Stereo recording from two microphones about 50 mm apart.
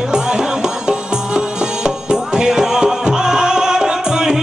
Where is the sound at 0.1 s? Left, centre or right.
Centre.